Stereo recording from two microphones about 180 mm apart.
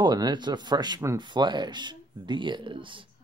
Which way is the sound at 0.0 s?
25° right (ahead or behind).